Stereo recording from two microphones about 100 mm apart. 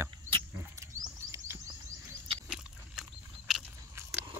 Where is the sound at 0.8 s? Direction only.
30° right (ahead or behind).